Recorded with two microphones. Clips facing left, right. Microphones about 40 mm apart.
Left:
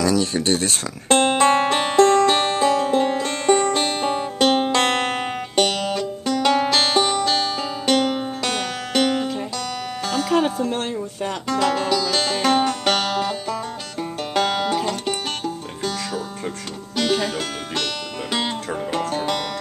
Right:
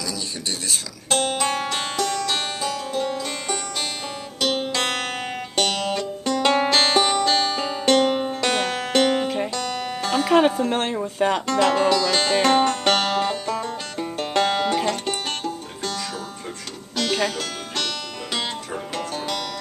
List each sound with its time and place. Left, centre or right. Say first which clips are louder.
0.0 s music: left 10 dB; left; by 11.4 s right
11.4 s music: left 1 dB; centre
16.9 s music: left 3 dB; centre
18.9 s music: left 4 dB; centre